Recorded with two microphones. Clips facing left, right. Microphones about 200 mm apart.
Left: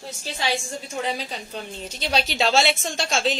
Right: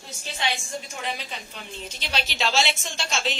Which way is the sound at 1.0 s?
35° left (ahead or behind).